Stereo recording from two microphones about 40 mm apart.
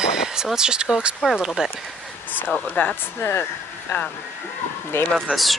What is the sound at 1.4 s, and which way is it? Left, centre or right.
Speech, centre.